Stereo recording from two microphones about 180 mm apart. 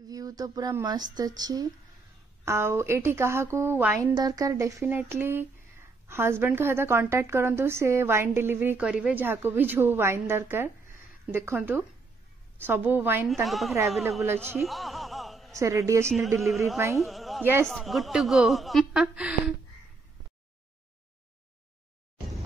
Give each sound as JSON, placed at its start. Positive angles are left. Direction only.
{"t": 0.1, "sound": "a woman's voice", "side_deg": -20}
{"t": 13.3, "sound": "a woman's voice", "side_deg": 0}
{"t": 14.2, "sound": "a woman's voice", "side_deg": -15}
{"t": 14.6, "sound": "chuckle", "side_deg": 0}
{"t": 15.5, "sound": "a woman's voice", "side_deg": -15}
{"t": 16.3, "sound": "a woman's voice", "side_deg": 0}
{"t": 16.7, "sound": "a woman's voice", "side_deg": -15}
{"t": 17.0, "sound": "a sound", "side_deg": 0}
{"t": 17.4, "sound": "a man's voice", "side_deg": -10}
{"t": 17.6, "sound": "a woman's voice", "side_deg": 0}